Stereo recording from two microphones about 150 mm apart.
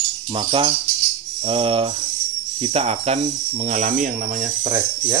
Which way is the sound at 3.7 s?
55° right (ahead or behind).